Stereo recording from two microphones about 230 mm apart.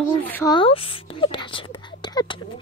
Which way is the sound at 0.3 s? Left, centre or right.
Centre.